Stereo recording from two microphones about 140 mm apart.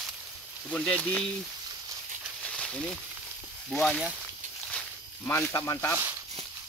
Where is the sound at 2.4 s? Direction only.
5° left (ahead or behind).